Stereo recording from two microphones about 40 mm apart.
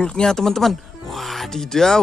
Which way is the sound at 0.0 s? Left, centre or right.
Left.